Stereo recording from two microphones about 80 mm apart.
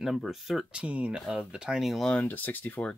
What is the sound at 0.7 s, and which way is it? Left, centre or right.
Speech, centre.